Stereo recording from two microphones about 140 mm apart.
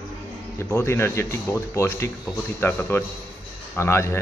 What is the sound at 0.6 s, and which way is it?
A man's voice, 20° left (ahead or behind).